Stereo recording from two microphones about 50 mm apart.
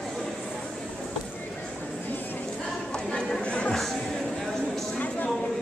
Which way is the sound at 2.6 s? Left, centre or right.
Centre.